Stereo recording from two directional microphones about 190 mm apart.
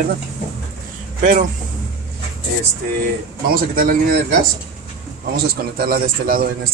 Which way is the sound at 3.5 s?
50° right (ahead or behind).